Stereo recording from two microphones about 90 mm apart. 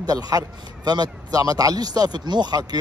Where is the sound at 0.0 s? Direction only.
45° right (ahead or behind).